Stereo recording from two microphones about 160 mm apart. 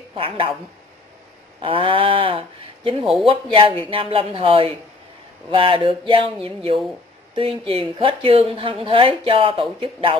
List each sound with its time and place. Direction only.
0.1 s speech: 35° right (ahead or behind)
1.6 s speech: 35° right (ahead or behind)
3.0 s speech: centre (ahead or behind)
3.3 s speech: 35° right (ahead or behind)